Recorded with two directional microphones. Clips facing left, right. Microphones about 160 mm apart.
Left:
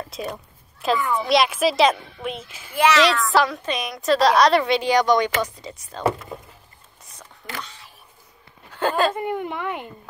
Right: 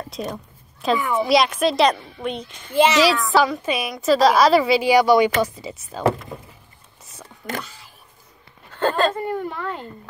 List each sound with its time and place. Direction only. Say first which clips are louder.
0.0 s a sound: right 1 dB; centre (ahead or behind)
0.7 s a child's voice: right 2 dB; centre (ahead or behind)
2.7 s a child's voice: right 2 dB; 25° right (ahead or behind)
3.0 s a woman's voice: right 1 dB; centre (ahead or behind)
7.6 s a sound: even; centre (ahead or behind)
8.7 s a woman's voice: right 1 dB; 10° left (ahead or behind)